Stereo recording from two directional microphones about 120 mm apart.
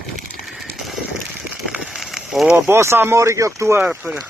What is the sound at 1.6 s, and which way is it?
Fire, 5° right (ahead or behind).